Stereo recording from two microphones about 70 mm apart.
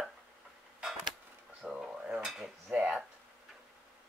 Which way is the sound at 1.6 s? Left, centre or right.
Centre.